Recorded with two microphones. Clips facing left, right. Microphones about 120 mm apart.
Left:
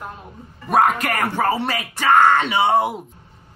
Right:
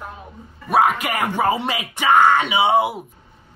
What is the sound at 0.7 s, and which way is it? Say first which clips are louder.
A man's voice: even; 10° right (ahead or behind).